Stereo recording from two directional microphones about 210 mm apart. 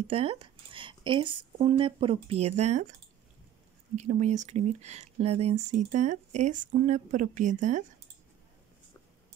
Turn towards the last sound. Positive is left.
turn(degrees=-35)  # may be behind; listen again after turning